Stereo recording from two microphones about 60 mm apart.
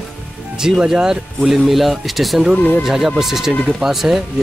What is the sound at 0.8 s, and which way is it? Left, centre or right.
Speech, centre.